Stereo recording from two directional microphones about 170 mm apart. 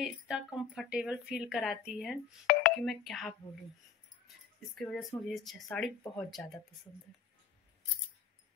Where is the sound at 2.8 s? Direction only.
Centre (ahead or behind).